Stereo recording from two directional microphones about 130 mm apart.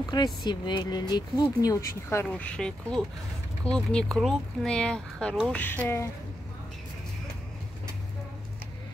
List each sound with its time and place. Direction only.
0.1 s speech: 35° left (ahead or behind)
2.2 s speech: 10° left (ahead or behind)
5.6 s speech: 15° left (ahead or behind)